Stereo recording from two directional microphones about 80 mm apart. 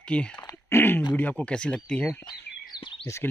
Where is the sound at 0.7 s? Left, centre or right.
Left.